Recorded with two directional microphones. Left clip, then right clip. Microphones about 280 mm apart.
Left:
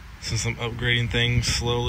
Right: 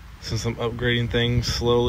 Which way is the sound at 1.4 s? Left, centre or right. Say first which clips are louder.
Left 1 dB; centre.